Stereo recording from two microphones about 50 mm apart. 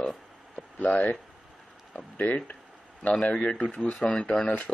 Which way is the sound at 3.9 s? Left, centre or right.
Centre.